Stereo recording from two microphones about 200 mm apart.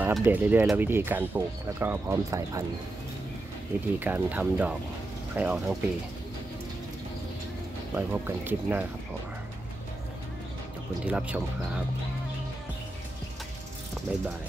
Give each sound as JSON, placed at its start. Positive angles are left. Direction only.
{"t": 0.0, "sound": "speech", "side_deg": -10}
{"t": 4.0, "sound": "speech", "side_deg": -10}
{"t": 7.9, "sound": "speech", "side_deg": -10}
{"t": 11.1, "sound": "speech", "side_deg": -5}
{"t": 14.1, "sound": "speech", "side_deg": -5}